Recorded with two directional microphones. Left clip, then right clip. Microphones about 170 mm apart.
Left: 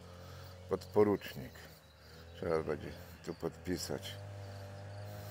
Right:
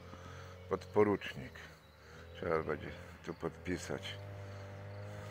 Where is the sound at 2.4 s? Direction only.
15° left (ahead or behind).